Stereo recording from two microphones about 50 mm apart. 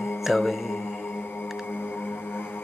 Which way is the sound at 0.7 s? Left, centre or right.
Left.